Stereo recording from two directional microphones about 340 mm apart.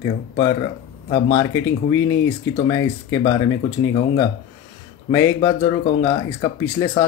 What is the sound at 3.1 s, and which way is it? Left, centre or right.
Speech, centre.